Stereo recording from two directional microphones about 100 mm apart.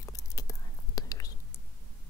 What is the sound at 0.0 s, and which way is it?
Whispering, 35° left (ahead or behind).